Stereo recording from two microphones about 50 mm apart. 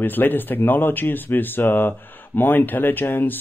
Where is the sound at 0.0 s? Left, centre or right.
Left.